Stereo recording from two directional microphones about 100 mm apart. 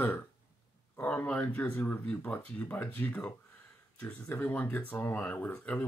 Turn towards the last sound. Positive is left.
turn(degrees=15)  # may be behind; listen again after turning